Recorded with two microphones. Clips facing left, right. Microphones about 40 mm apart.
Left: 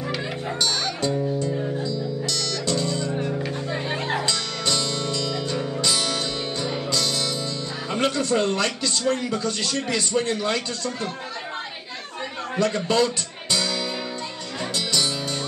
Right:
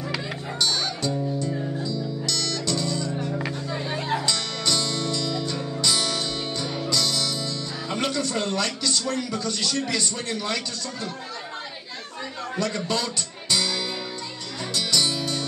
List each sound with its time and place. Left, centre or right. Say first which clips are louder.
1.6 s music: left 2 dB; centre
2.6 s music: left 2 dB; left
8.0 s speech: left 5 dB; left
12.5 s a man's voice: left 6 dB; left
14.8 s music: right 1 dB; left